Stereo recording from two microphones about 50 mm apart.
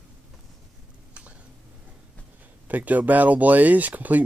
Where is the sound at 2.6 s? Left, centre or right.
Right.